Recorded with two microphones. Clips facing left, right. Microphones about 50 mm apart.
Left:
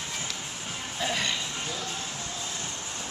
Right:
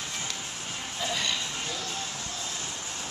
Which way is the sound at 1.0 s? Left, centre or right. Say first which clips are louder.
Left 2 dB; left.